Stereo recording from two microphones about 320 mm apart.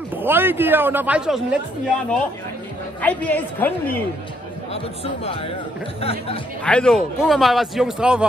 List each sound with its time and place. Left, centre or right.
0.1 s speech: centre
3.0 s a man's voice: centre
4.7 s speech: centre
6.6 s a man's voice: centre